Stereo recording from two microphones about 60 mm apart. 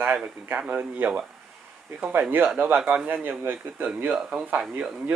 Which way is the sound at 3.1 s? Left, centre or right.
Right.